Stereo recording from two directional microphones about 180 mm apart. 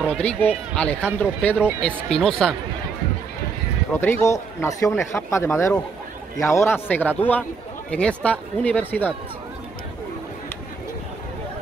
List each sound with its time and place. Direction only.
0.1 s speech: 10° left (ahead or behind)
3.9 s speech: 15° left (ahead or behind)